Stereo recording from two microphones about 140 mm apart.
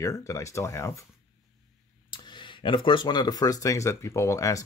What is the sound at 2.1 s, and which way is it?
Speech, 35° left (ahead or behind).